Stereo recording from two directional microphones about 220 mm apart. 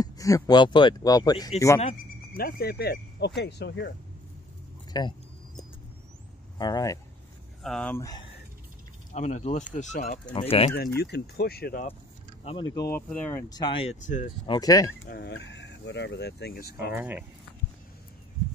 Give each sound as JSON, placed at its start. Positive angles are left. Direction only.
{"t": 0.0, "sound": "speech", "side_deg": 15}
{"t": 2.3, "sound": "speech", "side_deg": 45}
{"t": 4.9, "sound": "speech", "side_deg": 20}
{"t": 6.6, "sound": "speech", "side_deg": 15}
{"t": 7.6, "sound": "speech", "side_deg": 5}
{"t": 9.1, "sound": "speech", "side_deg": 30}
{"t": 10.3, "sound": "speech", "side_deg": 25}
{"t": 11.0, "sound": "speech", "side_deg": 50}
{"t": 12.4, "sound": "speech", "side_deg": 20}
{"t": 14.4, "sound": "speech", "side_deg": 20}
{"t": 15.0, "sound": "speech", "side_deg": 50}
{"t": 16.9, "sound": "speech", "side_deg": -10}